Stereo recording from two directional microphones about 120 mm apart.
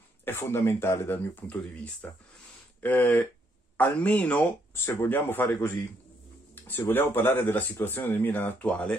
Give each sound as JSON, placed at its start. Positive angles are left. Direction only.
{"t": 0.2, "sound": "speech", "side_deg": 20}